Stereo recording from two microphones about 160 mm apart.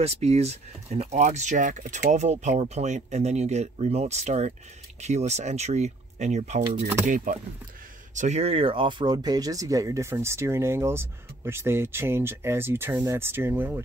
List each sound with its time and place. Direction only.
0.0 s speech: 40° right (ahead or behind)
7.1 s speech: 55° right (ahead or behind); by 13.8 s 15° right (ahead or behind)